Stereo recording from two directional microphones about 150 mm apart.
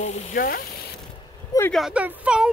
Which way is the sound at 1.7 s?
5° right (ahead or behind).